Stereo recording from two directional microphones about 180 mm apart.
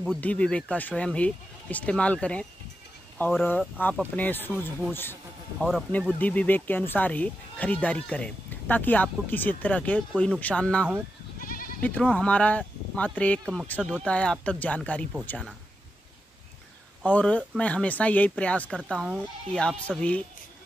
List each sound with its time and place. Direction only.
0.2 s speech: 5° left (ahead or behind)
5.6 s speech: centre (ahead or behind)
11.4 s goat: 50° left (ahead or behind)
11.8 s speech: 5° left (ahead or behind)
17.0 s speech: 10° left (ahead or behind)